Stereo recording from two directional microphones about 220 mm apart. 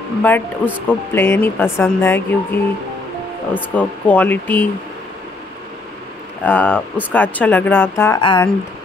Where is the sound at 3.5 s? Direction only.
10° left (ahead or behind).